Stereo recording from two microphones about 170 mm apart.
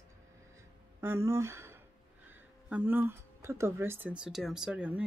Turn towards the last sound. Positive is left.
turn(degrees=-5)  # may be behind; listen again after turning